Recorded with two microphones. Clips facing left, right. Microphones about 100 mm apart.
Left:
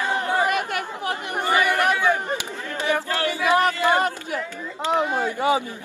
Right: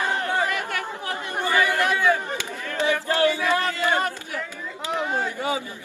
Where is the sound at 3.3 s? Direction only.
20° left (ahead or behind).